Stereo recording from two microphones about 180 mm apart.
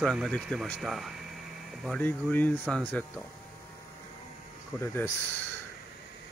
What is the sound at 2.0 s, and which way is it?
Speech, 10° left (ahead or behind).